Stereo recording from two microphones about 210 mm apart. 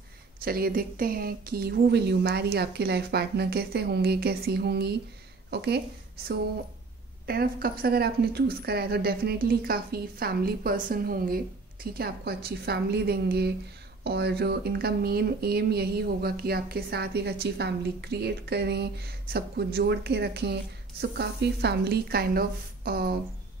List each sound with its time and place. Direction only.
0.4 s speech: 45° right (ahead or behind)
7.2 s speech: 45° right (ahead or behind)